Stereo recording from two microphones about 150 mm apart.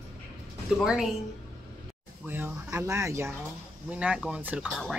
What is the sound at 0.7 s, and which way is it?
Speech, 5° right (ahead or behind).